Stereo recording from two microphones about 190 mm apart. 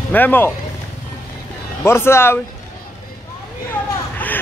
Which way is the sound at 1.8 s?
15° left (ahead or behind).